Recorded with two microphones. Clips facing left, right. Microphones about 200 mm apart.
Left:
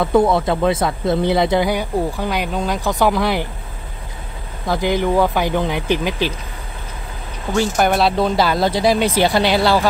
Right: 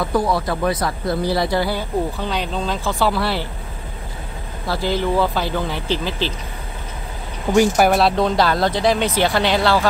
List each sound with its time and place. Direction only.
0.1 s speech: 25° left (ahead or behind)
4.6 s speech: 15° left (ahead or behind)
7.5 s speech: 10° right (ahead or behind); by 9.8 s 10° left (ahead or behind)